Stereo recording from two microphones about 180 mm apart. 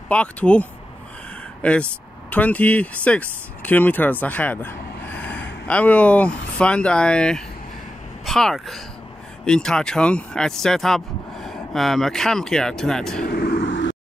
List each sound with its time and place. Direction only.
0.1 s speech: 5° left (ahead or behind)
13.2 s vehicle: 60° left (ahead or behind); by 13.9 s 80° left